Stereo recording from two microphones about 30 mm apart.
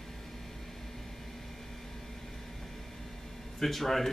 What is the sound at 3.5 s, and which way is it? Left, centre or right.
Speech, centre.